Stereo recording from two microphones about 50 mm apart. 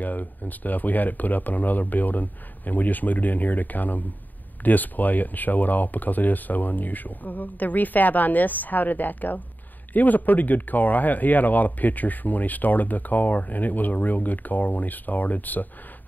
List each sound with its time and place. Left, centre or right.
0.0 s speech: left